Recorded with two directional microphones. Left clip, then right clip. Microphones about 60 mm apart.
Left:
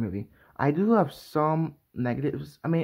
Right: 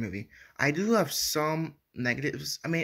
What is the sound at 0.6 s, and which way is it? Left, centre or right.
Speech, left.